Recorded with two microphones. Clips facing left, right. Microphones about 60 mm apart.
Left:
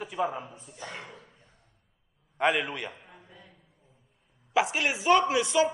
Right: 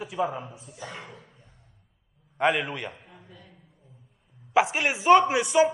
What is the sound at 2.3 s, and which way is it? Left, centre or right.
Speech, centre.